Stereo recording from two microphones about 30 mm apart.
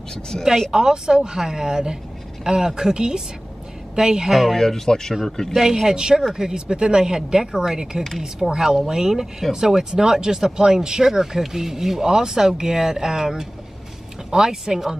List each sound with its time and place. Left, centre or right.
0.7 s speech: centre
4.6 s speech: centre
5.5 s speech: centre
5.9 s speech: right